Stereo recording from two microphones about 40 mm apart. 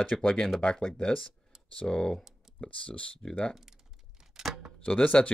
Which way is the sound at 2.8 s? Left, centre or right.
Left.